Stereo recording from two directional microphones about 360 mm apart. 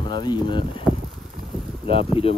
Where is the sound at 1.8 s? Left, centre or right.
Centre.